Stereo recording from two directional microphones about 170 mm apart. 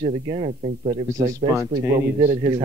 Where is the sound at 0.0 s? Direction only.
40° right (ahead or behind).